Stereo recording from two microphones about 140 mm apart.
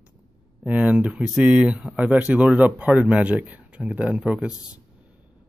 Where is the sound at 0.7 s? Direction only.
5° right (ahead or behind).